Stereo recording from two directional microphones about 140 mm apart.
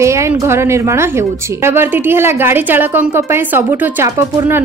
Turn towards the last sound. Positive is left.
turn(degrees=-20)  # may be behind; listen again after turning